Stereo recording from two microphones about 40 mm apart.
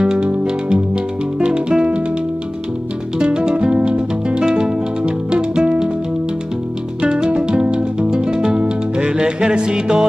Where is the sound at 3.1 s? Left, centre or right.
Right.